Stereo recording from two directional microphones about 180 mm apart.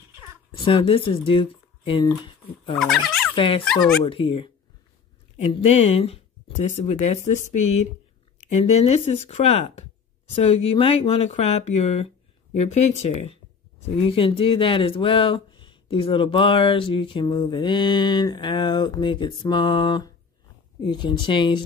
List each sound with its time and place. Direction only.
0.5 s speech: 30° left (ahead or behind)
2.8 s speech: centre (ahead or behind)
3.3 s speech: 30° left (ahead or behind)
3.6 s speech: centre (ahead or behind)
4.0 s speech: 30° left (ahead or behind)